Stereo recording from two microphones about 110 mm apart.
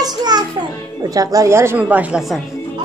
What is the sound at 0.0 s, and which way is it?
Music, 40° right (ahead or behind).